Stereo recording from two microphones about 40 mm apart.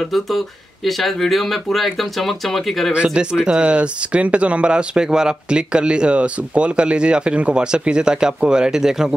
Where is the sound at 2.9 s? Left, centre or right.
Right.